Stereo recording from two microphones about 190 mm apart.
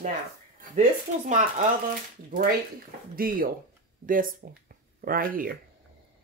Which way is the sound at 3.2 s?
50° right (ahead or behind).